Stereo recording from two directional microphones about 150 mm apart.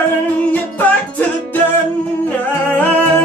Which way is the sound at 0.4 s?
10° left (ahead or behind).